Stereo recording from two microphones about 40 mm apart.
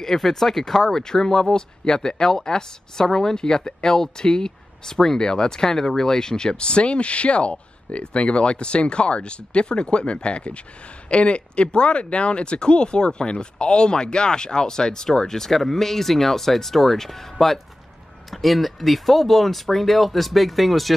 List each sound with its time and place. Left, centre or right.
0.0 s speech: centre